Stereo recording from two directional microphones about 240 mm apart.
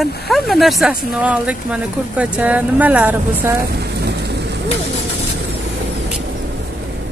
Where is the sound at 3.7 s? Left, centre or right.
Right.